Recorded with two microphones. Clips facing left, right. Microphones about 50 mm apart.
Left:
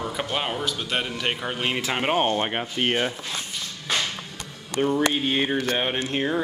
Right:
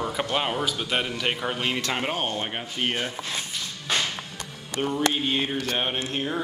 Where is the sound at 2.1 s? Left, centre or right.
Left.